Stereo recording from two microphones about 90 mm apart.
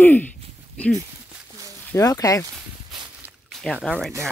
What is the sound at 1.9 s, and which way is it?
Speech, 40° left (ahead or behind).